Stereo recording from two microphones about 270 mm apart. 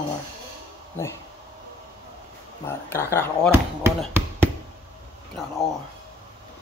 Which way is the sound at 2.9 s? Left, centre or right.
Centre.